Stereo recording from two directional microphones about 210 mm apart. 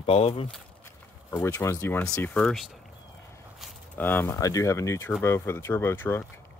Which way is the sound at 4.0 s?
10° left (ahead or behind).